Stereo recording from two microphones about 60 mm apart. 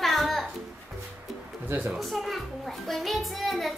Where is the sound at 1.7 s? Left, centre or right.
Right.